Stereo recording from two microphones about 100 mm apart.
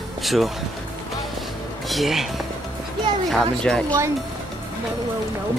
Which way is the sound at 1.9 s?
Centre (ahead or behind).